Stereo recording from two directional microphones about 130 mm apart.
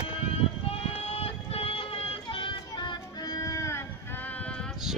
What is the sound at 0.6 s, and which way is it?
Child singing, 50° left (ahead or behind).